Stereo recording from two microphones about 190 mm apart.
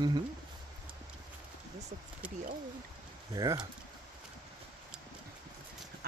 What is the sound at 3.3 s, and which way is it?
Speech, 20° right (ahead or behind).